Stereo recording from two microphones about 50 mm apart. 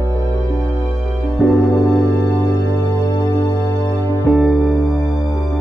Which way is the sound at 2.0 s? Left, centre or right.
Left.